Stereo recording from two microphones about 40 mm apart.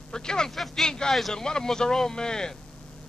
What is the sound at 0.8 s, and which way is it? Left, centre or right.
A man's voice, centre.